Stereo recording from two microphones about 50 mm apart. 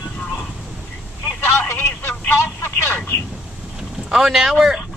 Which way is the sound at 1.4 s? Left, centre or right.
Left.